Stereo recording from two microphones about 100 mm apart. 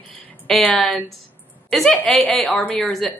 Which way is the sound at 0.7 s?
5° left (ahead or behind).